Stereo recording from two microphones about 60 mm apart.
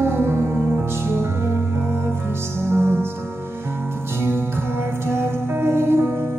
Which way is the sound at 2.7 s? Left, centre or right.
Right.